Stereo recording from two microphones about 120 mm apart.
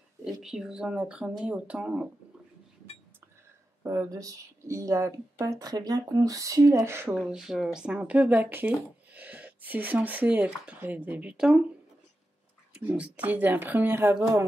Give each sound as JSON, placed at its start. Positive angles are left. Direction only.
{"t": 0.2, "sound": "speech", "side_deg": -5}
{"t": 3.8, "sound": "speech", "side_deg": -25}
{"t": 7.2, "sound": "speech", "side_deg": -5}
{"t": 12.7, "sound": "speech", "side_deg": -10}